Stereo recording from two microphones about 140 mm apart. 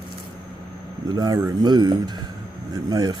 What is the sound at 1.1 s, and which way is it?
Speech, 25° right (ahead or behind).